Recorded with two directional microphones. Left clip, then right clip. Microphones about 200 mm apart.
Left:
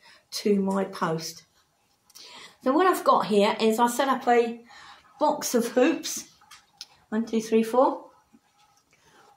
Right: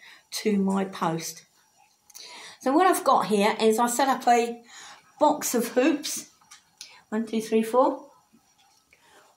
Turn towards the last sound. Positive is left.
turn(degrees=-10)  # may be behind; listen again after turning